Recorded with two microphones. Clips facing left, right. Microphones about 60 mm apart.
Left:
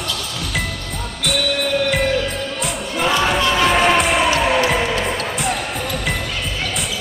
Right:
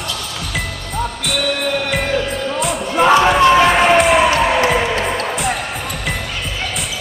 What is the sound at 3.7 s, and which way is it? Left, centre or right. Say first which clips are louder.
Music: right 4 dB; centre.